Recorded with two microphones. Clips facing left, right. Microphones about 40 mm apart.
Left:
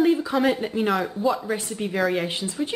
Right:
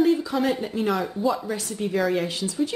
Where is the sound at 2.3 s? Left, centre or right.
Left.